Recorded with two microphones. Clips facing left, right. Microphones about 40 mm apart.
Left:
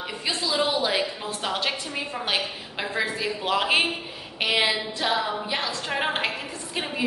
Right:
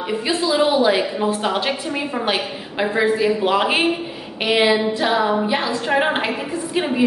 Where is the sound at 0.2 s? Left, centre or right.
Centre.